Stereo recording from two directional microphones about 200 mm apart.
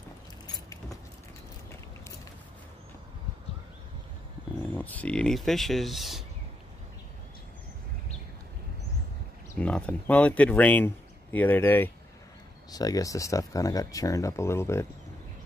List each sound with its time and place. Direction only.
4.7 s speech: 10° left (ahead or behind)
9.6 s speech: 5° left (ahead or behind)